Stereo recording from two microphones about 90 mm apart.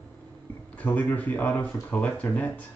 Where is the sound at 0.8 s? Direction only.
20° left (ahead or behind).